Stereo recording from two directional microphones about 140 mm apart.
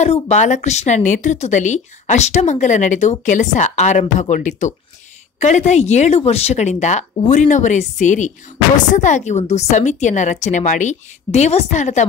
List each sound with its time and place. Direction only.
0.0 s a woman's voice: 50° left (ahead or behind)